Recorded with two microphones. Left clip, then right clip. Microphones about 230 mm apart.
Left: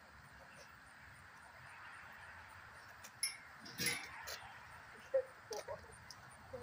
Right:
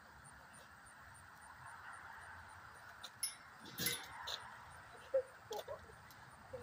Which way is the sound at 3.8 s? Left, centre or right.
Centre.